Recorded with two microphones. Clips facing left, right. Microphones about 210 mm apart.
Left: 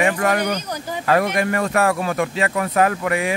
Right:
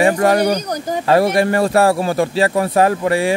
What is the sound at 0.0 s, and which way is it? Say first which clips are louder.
Speech: right 6 dB; 35° right (ahead or behind).